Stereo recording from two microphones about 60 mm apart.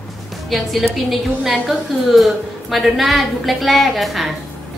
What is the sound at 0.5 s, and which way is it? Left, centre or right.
A woman's voice, centre.